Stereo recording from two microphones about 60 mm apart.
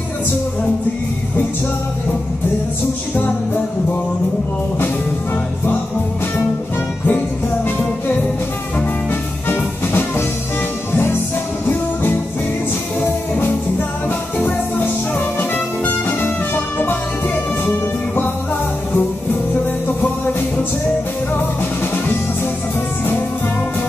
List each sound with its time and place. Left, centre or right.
7.1 s music: left
9.5 s music: left
11.7 s music: left
15.1 s music: left